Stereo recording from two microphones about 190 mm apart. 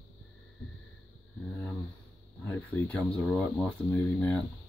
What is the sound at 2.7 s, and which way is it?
Speech, 10° left (ahead or behind).